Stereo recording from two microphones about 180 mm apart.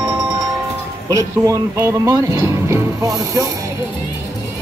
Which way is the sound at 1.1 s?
15° right (ahead or behind).